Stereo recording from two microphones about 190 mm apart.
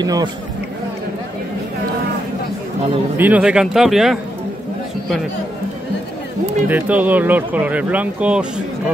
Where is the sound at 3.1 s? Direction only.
10° right (ahead or behind).